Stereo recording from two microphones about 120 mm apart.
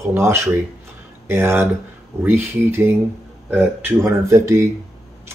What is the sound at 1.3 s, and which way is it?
Speech, 20° right (ahead or behind).